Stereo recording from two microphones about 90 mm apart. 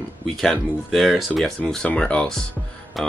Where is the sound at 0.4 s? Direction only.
Centre (ahead or behind).